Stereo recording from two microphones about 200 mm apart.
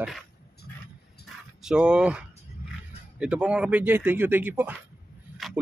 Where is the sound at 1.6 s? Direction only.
5° right (ahead or behind).